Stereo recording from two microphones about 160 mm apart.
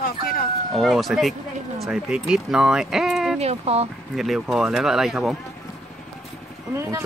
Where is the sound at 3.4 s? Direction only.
40° right (ahead or behind).